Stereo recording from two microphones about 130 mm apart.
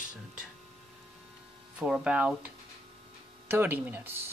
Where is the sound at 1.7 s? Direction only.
5° right (ahead or behind).